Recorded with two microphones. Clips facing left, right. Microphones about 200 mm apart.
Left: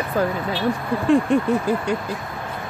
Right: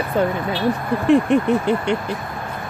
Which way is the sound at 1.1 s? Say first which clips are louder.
Right 2 dB; 20° right (ahead or behind).